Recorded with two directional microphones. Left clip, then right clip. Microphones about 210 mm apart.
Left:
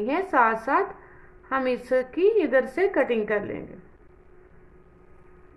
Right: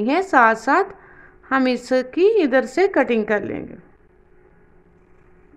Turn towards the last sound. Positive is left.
turn(degrees=-40)  # may be behind; listen again after turning